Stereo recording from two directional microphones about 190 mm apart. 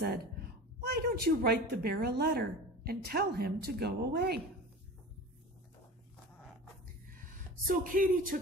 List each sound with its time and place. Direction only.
0.7 s a woman's voice: 55° right (ahead or behind)
7.6 s speech: 45° right (ahead or behind)